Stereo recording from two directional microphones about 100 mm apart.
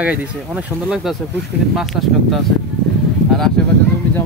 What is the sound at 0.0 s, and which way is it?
Speech, 15° right (ahead or behind).